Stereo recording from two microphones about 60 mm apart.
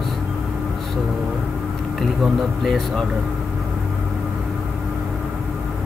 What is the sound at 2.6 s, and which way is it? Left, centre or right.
Speech, centre.